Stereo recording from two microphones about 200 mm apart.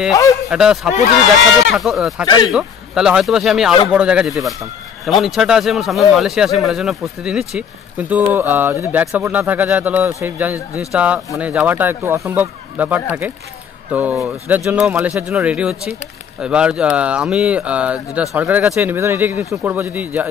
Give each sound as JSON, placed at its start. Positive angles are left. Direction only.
{"t": 0.5, "sound": "speech", "side_deg": -5}
{"t": 2.2, "sound": "speech", "side_deg": 20}
{"t": 2.5, "sound": "speech", "side_deg": -5}